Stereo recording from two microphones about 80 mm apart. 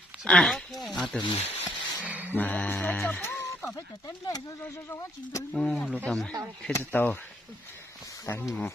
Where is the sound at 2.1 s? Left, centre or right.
Centre.